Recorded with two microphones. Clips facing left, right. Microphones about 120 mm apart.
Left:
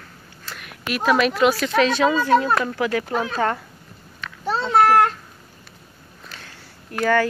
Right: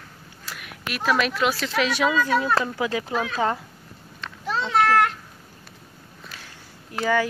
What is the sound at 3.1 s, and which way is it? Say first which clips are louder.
Speech: left 2 dB; 35° left (ahead or behind).